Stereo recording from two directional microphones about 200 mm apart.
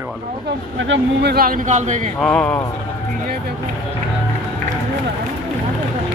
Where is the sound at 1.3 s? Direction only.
40° right (ahead or behind).